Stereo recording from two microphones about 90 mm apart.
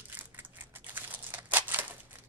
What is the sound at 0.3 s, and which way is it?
Crumpling, 20° right (ahead or behind).